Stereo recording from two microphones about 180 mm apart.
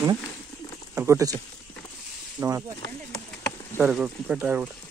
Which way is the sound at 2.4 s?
15° right (ahead or behind).